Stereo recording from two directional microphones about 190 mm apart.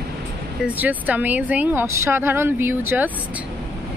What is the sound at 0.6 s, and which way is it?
Speech, 10° right (ahead or behind).